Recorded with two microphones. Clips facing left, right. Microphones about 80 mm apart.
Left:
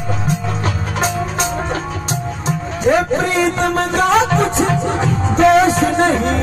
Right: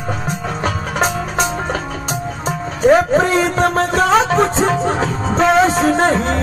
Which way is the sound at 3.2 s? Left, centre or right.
Right.